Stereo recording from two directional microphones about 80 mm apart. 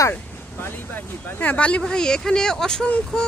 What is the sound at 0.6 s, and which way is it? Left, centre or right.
Speech, left.